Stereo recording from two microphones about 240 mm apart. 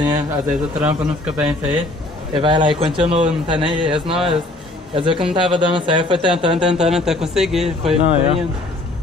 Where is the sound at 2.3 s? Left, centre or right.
Right.